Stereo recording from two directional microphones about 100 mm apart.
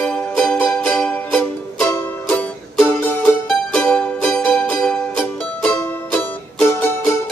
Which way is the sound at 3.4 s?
10° left (ahead or behind).